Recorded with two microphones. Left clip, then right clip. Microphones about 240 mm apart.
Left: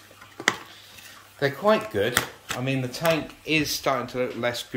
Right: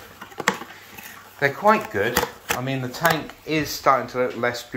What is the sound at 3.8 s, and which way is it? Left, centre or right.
Speech, centre.